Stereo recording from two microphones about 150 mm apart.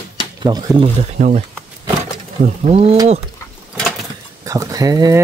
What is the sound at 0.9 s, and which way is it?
Speech, 50° right (ahead or behind).